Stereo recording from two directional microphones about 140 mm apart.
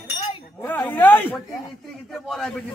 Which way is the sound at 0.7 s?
15° left (ahead or behind).